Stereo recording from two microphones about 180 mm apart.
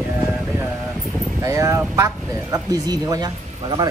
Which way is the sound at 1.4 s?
15° right (ahead or behind).